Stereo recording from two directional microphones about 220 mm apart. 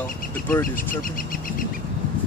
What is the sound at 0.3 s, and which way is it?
Speech, 10° left (ahead or behind).